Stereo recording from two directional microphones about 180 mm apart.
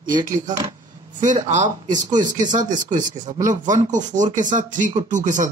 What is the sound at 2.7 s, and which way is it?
Speech, 45° right (ahead or behind).